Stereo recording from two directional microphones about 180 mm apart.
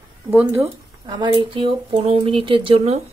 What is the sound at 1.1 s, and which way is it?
Speech, 25° right (ahead or behind).